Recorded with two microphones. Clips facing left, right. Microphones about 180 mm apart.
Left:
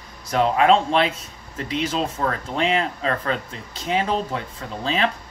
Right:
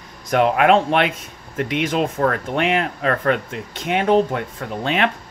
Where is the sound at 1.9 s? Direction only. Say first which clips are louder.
Right 5 dB; 60° right (ahead or behind).